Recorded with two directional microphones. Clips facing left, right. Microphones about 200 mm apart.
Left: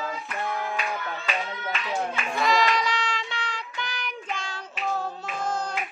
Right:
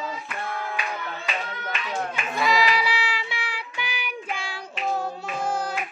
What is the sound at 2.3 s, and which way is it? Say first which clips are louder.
Child singing: right 1 dB; 5° right (ahead or behind).